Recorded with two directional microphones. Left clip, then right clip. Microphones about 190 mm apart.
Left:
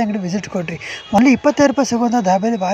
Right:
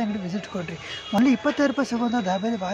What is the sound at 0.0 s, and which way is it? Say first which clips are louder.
Speech: left 8 dB; 25° left (ahead or behind).